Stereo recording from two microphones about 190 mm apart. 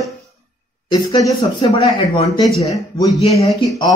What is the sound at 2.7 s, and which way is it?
Speech, 20° left (ahead or behind).